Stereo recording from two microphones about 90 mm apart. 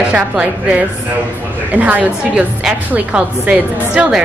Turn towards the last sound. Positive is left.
turn(degrees=-10)  # may be behind; listen again after turning